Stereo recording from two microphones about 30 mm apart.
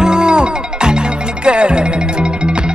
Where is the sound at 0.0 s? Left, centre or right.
Right.